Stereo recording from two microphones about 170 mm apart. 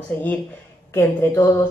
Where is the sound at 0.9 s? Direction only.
15° left (ahead or behind).